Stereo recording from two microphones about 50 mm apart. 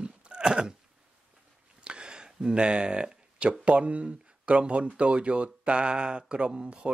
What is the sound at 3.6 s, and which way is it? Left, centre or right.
Speech, right.